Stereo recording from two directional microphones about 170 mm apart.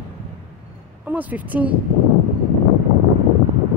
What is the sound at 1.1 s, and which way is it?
Speech, 10° right (ahead or behind).